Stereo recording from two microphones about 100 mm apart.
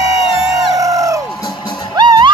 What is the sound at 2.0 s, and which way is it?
Music, 50° right (ahead or behind).